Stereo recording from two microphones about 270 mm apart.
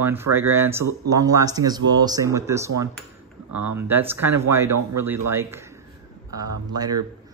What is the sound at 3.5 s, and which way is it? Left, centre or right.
Speech, right.